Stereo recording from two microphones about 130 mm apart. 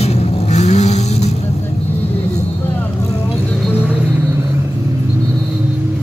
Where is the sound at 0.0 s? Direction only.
55° left (ahead or behind).